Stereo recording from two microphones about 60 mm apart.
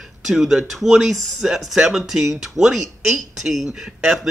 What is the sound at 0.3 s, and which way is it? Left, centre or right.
Speech, centre.